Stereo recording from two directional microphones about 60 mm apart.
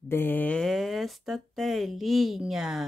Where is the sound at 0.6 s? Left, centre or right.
Centre.